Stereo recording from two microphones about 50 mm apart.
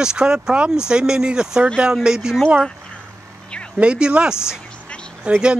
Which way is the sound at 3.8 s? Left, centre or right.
Right.